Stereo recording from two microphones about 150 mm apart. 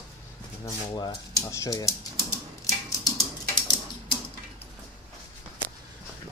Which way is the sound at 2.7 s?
25° left (ahead or behind).